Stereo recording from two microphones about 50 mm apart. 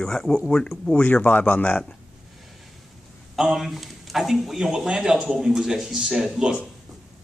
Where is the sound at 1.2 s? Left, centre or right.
Left.